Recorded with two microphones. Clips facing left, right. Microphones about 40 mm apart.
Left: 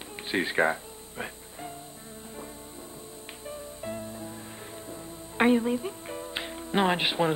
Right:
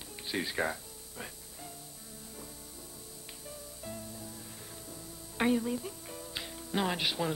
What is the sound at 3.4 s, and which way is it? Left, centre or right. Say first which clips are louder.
Music: left 9 dB; left.